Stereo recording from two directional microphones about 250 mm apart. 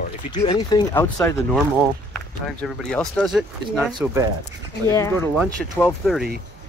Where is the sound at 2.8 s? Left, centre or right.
Centre.